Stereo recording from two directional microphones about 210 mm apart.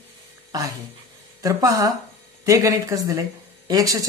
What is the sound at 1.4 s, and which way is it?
Speech, 15° right (ahead or behind).